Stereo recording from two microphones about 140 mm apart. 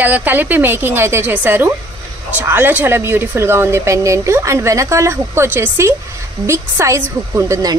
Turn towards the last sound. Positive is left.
turn(degrees=-20)  # may be behind; listen again after turning